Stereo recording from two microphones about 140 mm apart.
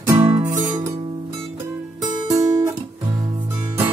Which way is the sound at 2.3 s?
25° right (ahead or behind).